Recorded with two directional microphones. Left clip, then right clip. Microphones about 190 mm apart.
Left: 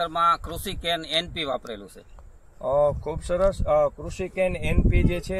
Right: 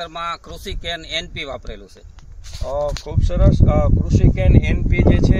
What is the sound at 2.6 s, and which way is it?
Speech, 10° left (ahead or behind).